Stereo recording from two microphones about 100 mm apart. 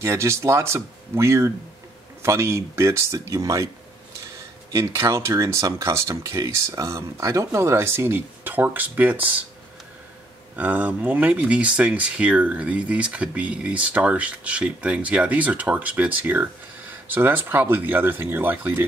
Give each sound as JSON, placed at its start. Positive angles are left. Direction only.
{"t": 0.0, "sound": "speech", "side_deg": -25}
{"t": 4.7, "sound": "speech", "side_deg": -30}
{"t": 10.5, "sound": "speech", "side_deg": -15}